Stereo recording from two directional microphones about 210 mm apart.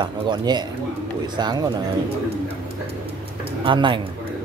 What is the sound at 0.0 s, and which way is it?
Speech, 20° right (ahead or behind).